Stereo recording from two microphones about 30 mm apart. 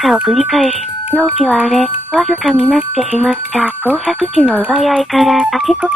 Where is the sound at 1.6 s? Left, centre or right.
Centre.